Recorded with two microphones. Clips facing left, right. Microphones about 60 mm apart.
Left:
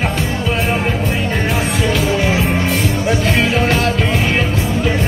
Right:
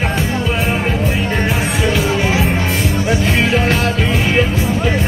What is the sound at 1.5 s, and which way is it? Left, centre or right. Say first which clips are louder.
Music: even; centre.